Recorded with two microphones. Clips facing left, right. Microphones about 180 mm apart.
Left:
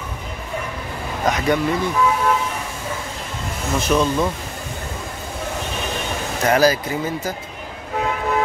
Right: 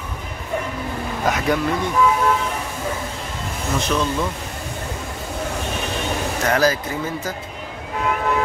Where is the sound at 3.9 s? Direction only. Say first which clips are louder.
Left 5 dB; 20° left (ahead or behind).